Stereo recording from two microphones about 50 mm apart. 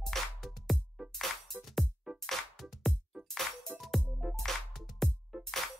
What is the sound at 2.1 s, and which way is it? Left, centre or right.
Music, centre.